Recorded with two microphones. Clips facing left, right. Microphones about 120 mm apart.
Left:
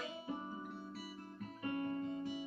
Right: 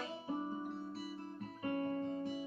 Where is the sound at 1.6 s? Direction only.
40° right (ahead or behind).